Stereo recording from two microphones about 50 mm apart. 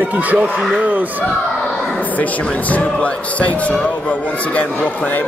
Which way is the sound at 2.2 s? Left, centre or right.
Left.